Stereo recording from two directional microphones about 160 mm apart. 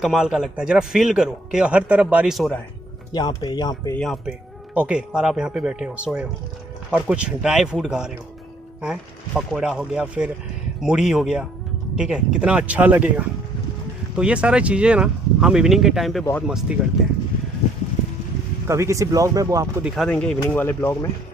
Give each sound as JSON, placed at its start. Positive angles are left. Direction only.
{"t": 0.0, "sound": "a man's voice", "side_deg": 0}
{"t": 3.1, "sound": "speech", "side_deg": 25}
{"t": 3.9, "sound": "a man's voice", "side_deg": 5}
{"t": 4.7, "sound": "a man's voice", "side_deg": -5}
{"t": 14.1, "sound": "a man's voice", "side_deg": -5}
{"t": 18.7, "sound": "speech", "side_deg": -20}
{"t": 19.8, "sound": "speech", "side_deg": 5}